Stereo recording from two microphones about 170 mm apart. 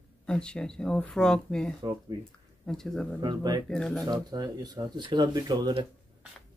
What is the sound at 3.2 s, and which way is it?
Speech, 25° right (ahead or behind).